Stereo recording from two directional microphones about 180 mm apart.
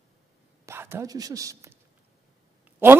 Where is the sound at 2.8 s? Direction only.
15° right (ahead or behind).